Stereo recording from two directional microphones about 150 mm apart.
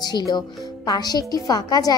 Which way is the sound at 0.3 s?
25° left (ahead or behind).